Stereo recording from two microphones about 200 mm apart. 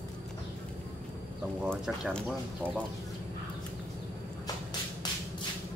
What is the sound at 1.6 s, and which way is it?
Speech, 5° right (ahead or behind).